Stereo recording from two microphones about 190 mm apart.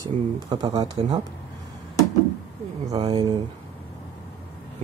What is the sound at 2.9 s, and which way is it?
Speech, 25° right (ahead or behind).